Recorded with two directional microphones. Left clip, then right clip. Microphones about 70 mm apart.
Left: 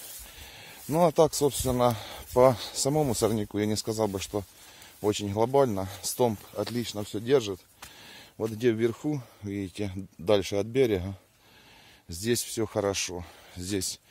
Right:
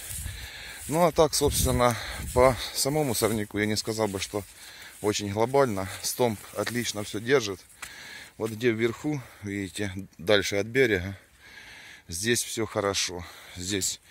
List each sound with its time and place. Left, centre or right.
0.4 s a sound: centre
0.9 s speech: left
1.4 s speech: centre
2.3 s speech: left
2.9 s speech: left
4.3 s speech: centre
5.0 s speech: centre
6.6 s speech: centre
8.5 s speech: left
9.0 s speech: centre
12.4 s speech: left